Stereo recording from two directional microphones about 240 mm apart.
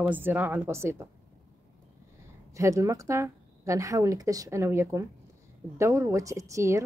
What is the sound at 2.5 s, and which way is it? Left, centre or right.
Speech, centre.